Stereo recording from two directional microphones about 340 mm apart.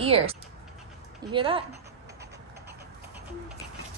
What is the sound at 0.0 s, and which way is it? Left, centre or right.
Speech, centre.